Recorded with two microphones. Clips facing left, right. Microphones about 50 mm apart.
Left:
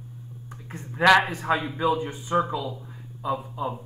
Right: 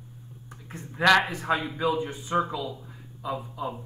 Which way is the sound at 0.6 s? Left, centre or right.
Left.